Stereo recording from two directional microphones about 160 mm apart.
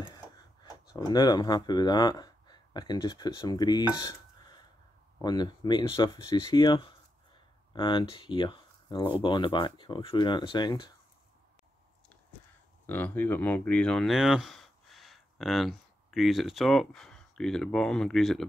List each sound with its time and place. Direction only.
0.0 s a sound: 25° left (ahead or behind)
5.2 s speech: 25° left (ahead or behind)
12.8 s speech: 10° left (ahead or behind)